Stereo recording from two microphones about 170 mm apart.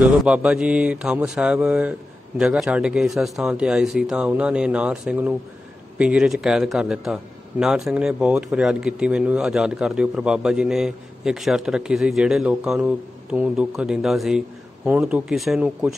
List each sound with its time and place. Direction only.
0.0 s a man's voice: 5° right (ahead or behind)